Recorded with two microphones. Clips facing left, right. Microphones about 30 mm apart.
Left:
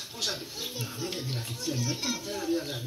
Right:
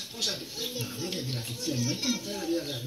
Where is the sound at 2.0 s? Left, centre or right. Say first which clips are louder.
Right 2 dB; right.